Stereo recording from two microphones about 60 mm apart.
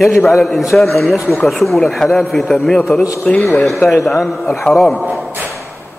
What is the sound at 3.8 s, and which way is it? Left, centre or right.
Speech, centre.